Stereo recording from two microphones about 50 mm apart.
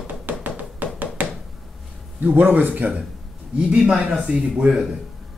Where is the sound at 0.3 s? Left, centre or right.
Right.